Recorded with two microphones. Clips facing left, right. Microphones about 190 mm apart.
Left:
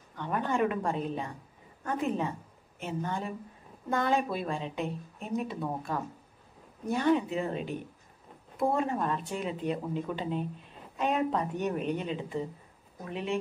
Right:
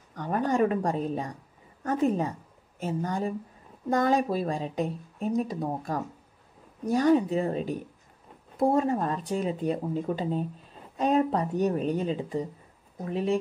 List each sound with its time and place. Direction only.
0.1 s speech: 40° right (ahead or behind)